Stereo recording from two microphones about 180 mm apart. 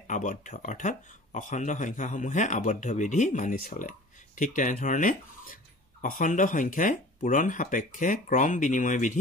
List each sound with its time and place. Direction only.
0.0 s speech: 45° left (ahead or behind)